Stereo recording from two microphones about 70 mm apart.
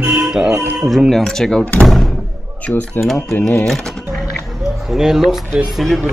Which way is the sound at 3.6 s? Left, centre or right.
Centre.